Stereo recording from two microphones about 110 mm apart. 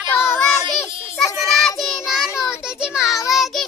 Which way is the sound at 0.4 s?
5° left (ahead or behind).